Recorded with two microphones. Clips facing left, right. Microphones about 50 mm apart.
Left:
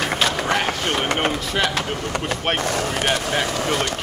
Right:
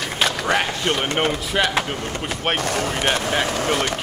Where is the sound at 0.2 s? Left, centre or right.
Centre.